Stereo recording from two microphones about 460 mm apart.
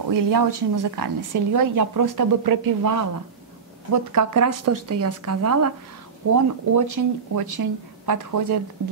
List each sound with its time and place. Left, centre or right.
0.1 s a woman's voice: right